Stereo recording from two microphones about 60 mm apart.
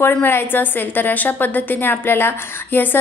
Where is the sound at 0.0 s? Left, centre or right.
Left.